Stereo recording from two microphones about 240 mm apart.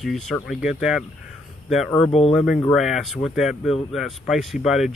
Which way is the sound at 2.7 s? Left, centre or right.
Centre.